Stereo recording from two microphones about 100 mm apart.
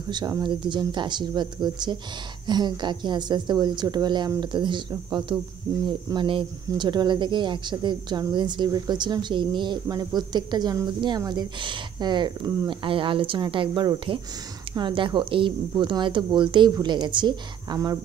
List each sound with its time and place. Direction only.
0.1 s speech: 45° right (ahead or behind)